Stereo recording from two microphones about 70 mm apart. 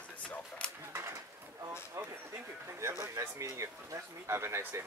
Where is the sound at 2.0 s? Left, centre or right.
Right.